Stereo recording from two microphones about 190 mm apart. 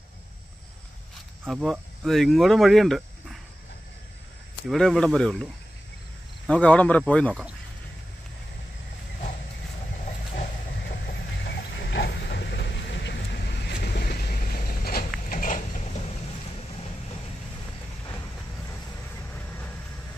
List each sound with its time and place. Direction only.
1.4 s speech: centre (ahead or behind)
4.6 s speech: centre (ahead or behind)
6.4 s speech: 5° left (ahead or behind)
10.3 s a sound: 50° left (ahead or behind)
19.3 s vehicle: 10° left (ahead or behind)